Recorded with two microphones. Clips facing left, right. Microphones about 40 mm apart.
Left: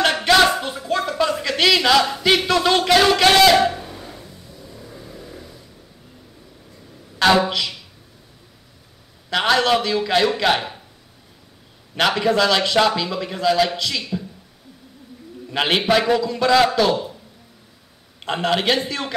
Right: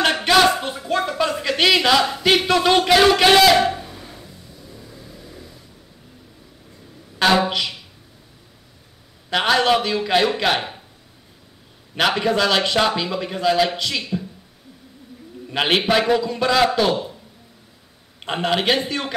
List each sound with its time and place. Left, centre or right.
0.3 s a sound: centre
1.4 s speech: centre
3.9 s a sound: centre
4.6 s vehicle: centre
7.2 s a man's voice: centre
9.3 s a man's voice: centre
11.9 s a man's voice: centre
15.5 s a man's voice: centre
18.2 s a man's voice: centre